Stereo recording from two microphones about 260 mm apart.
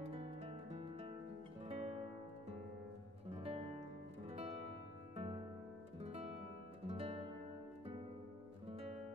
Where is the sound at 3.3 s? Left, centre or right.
Right.